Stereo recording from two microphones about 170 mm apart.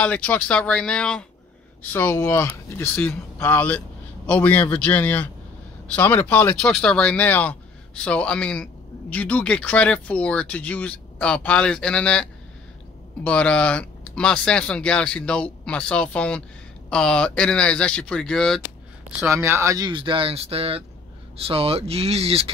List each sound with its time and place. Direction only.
0.0 s speech: 5° left (ahead or behind)
19.2 s speech: 15° right (ahead or behind); by 22.5 s 35° right (ahead or behind)